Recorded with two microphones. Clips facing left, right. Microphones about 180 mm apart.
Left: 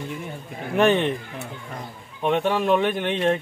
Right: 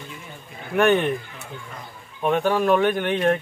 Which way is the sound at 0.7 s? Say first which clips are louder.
Even; 25° left (ahead or behind).